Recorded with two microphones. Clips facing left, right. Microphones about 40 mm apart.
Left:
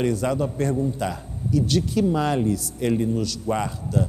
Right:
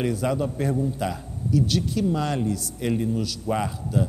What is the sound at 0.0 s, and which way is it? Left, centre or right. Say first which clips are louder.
A man's voice: left 2 dB; centre.